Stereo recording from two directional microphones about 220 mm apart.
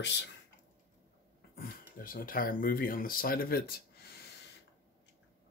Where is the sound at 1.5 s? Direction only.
40° left (ahead or behind).